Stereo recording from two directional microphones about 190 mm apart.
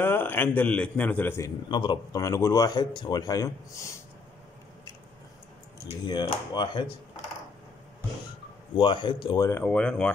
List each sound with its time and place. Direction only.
0.0 s a man's voice: 10° left (ahead or behind)
1.7 s speech: 25° left (ahead or behind)
6.0 s speech: 20° left (ahead or behind)
8.7 s speech: 25° left (ahead or behind)
9.5 s a man's voice: 10° left (ahead or behind)